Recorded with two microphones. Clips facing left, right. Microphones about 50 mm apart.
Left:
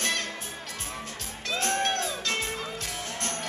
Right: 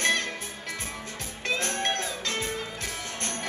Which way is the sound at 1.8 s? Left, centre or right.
Right.